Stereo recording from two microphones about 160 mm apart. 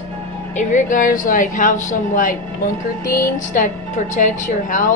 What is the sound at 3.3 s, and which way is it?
Speech, 50° left (ahead or behind).